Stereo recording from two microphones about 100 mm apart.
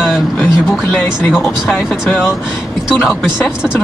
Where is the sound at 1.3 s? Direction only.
Centre (ahead or behind).